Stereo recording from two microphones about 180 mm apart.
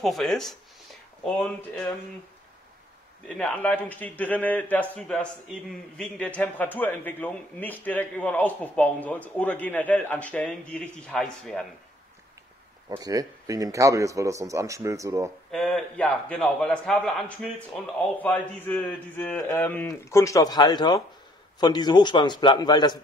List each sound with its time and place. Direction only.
0.0 s a man's voice: centre (ahead or behind)
3.3 s a man's voice: 5° left (ahead or behind)
12.8 s a man's voice: 20° right (ahead or behind)
15.5 s a man's voice: 5° left (ahead or behind); by 22.9 s 25° left (ahead or behind)